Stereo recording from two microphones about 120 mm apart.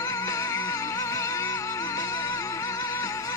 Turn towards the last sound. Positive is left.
turn(degrees=25)  # may be behind; listen again after turning